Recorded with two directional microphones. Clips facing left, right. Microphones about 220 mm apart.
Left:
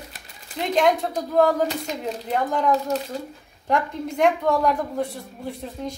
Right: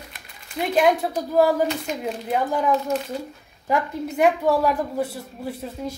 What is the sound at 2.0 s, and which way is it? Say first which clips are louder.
Speech: even; 5° right (ahead or behind).